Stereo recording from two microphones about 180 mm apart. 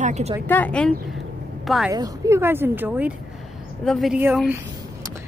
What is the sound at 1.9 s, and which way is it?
Speech, 20° right (ahead or behind).